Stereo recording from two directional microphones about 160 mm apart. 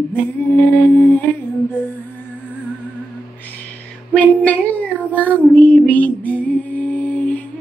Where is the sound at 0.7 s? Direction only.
10° left (ahead or behind).